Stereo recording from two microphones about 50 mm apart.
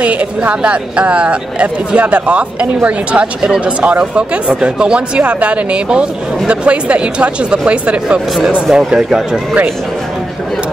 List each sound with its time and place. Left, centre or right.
0.0 s speech: right